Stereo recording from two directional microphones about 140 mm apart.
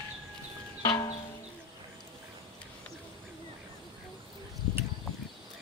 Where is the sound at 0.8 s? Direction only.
25° left (ahead or behind).